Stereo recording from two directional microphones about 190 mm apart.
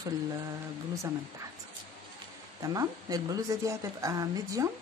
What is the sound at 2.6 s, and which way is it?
A woman's voice, 20° right (ahead or behind).